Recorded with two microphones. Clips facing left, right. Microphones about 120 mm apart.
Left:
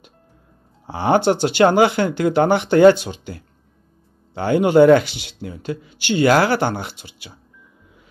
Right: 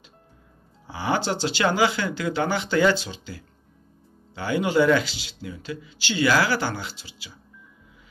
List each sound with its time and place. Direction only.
0.8 s speech: 55° left (ahead or behind)